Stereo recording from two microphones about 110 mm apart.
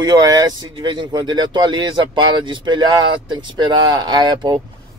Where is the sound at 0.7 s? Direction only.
45° right (ahead or behind).